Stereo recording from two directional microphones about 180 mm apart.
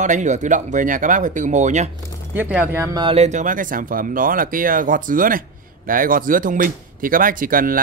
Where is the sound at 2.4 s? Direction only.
10° right (ahead or behind).